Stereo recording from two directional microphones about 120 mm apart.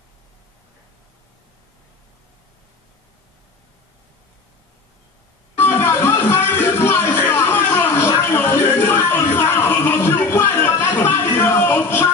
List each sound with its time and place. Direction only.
5.6 s music: 20° left (ahead or behind)